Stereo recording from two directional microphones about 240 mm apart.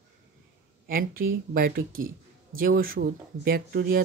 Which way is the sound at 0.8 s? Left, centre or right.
Right.